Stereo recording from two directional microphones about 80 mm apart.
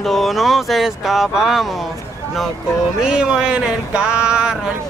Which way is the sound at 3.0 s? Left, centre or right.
Centre.